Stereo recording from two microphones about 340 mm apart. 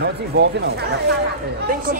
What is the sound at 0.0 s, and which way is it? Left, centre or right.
A woman's voice, right.